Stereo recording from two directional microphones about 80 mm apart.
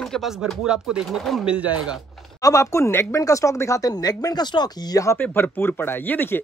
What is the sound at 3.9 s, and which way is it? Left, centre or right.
Speech, left.